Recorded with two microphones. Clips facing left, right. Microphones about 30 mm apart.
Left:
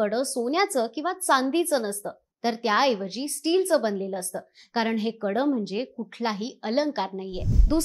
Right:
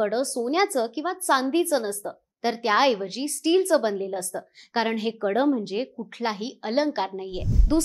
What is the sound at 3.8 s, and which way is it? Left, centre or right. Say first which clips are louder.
Speech: right 1 dB; centre.